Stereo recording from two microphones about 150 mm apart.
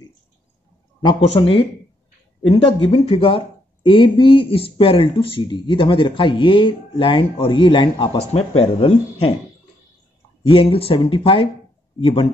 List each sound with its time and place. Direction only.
1.0 s speech: 35° left (ahead or behind)
10.4 s speech: 35° left (ahead or behind)